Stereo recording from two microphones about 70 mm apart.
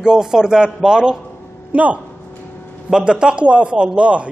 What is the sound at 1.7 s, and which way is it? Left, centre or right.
A man's voice, right.